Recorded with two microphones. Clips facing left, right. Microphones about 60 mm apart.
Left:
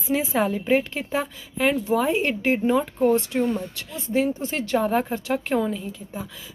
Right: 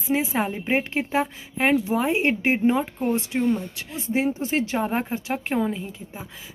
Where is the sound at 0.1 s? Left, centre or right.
Right; by 3.6 s centre.